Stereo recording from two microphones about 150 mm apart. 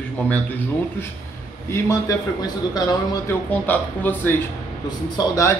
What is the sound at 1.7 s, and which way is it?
A man's voice, 20° left (ahead or behind).